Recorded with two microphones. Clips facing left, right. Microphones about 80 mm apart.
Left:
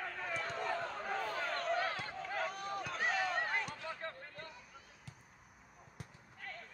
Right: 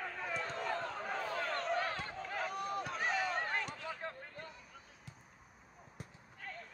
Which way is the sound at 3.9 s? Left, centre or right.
Centre.